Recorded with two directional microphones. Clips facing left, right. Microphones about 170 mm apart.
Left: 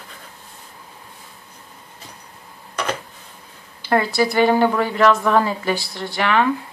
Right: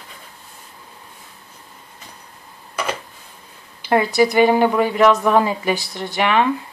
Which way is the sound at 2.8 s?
5° right (ahead or behind).